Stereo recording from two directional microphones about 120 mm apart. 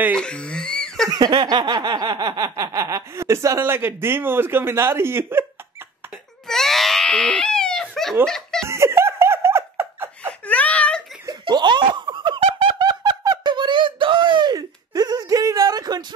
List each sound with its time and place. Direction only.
0.1 s speech: 5° left (ahead or behind)
1.0 s a sound: 35° right (ahead or behind)
6.4 s a sound: centre (ahead or behind)
8.3 s laughter: 5° left (ahead or behind)
8.6 s laughter: 20° right (ahead or behind)
10.5 s wail: 10° left (ahead or behind)
11.2 s snicker: 40° right (ahead or behind)